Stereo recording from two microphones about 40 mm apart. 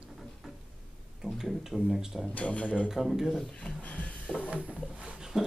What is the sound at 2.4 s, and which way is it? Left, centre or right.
Speech, left.